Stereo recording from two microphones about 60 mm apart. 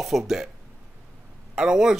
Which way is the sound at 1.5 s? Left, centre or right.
Centre.